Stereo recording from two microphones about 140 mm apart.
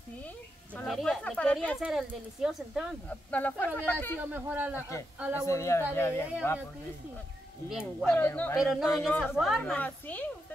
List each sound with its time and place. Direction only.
0.8 s speech: centre (ahead or behind)
1.8 s speech: 5° right (ahead or behind)
3.1 s speech: 10° left (ahead or behind)
4.2 s a man's voice: 10° right (ahead or behind)
5.5 s a man's voice: 20° left (ahead or behind)
8.1 s speech: 15° left (ahead or behind)
8.5 s speech: centre (ahead or behind)
9.7 s speech: 10° left (ahead or behind)